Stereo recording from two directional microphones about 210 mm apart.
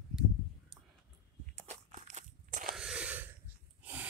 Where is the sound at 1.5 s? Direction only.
35° right (ahead or behind).